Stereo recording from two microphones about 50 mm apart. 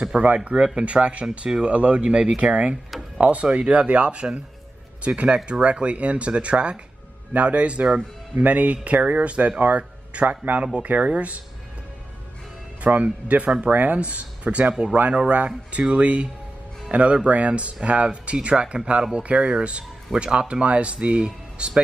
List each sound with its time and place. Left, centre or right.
0.0 s speech: right
12.8 s speech: right